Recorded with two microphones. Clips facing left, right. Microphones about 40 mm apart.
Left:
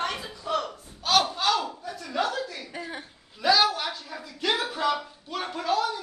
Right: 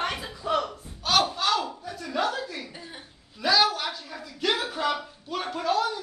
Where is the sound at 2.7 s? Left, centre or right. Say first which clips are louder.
Left 7 dB; left.